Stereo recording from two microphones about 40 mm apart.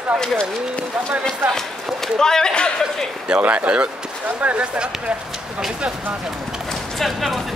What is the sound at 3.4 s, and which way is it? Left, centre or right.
Speech, right.